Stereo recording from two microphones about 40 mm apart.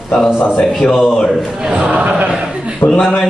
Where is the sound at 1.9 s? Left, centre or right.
Right.